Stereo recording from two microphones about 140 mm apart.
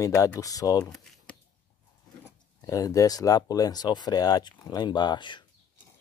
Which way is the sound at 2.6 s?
25° left (ahead or behind).